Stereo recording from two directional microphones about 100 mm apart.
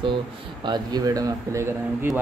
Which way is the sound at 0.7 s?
45° right (ahead or behind).